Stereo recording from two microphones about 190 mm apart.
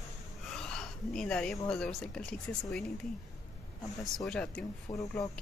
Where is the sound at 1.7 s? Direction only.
5° left (ahead or behind).